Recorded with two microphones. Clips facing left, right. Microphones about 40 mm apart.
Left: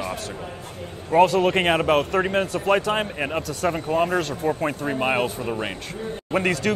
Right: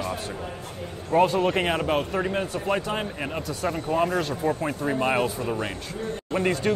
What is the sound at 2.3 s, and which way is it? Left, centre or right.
Speech, left.